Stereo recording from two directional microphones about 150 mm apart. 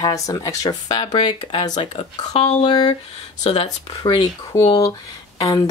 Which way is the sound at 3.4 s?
40° left (ahead or behind).